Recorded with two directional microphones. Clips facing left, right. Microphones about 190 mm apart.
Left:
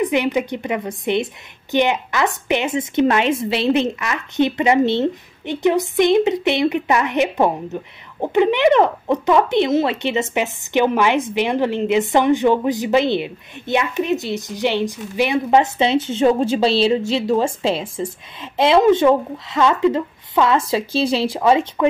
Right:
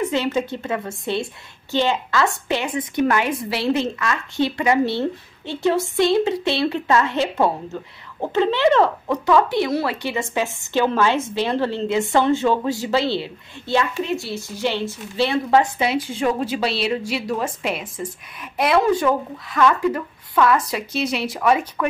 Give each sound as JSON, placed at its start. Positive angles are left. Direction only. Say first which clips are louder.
{"t": 0.0, "sound": "a woman's voice", "louder": "left 3 dB", "side_deg": 15}